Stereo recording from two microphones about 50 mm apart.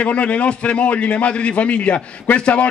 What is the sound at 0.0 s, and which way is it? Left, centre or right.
A man's voice, left.